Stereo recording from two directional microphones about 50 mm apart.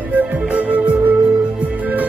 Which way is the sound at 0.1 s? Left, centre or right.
Right.